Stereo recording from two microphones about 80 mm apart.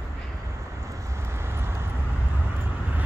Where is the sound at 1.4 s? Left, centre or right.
Right.